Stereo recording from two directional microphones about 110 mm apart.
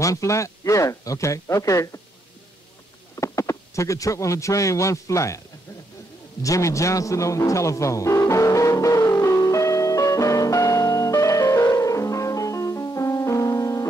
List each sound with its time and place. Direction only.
0.0 s speech: 30° left (ahead or behind)
3.2 s speech: 30° left (ahead or behind)
6.4 s a sound: 30° left (ahead or behind)